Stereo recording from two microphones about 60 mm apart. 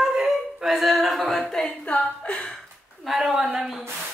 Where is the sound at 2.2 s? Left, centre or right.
Centre.